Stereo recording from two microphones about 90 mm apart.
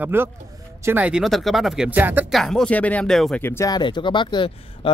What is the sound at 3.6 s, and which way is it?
Speech, 55° left (ahead or behind).